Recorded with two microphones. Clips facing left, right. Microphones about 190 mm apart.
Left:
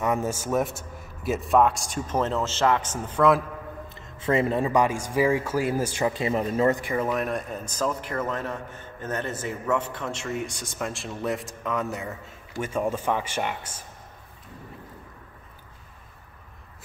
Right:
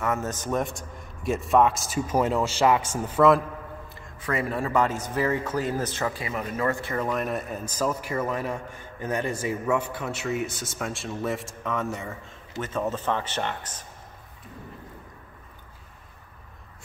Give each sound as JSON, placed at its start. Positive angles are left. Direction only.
{"t": 0.0, "sound": "a man's voice", "side_deg": 15}
{"t": 3.9, "sound": "speech", "side_deg": 25}
{"t": 6.1, "sound": "speech", "side_deg": 30}
{"t": 6.8, "sound": "a man's voice", "side_deg": 10}